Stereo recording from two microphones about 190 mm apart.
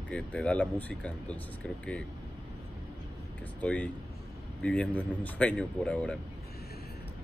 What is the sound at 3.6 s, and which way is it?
A man's voice, 5° left (ahead or behind).